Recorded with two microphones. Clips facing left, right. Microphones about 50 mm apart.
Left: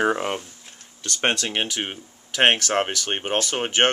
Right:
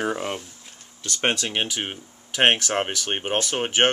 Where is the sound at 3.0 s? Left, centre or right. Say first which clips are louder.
Left 1 dB; centre.